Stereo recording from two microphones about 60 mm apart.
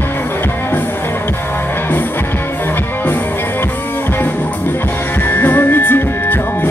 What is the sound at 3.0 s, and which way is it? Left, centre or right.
Music, left.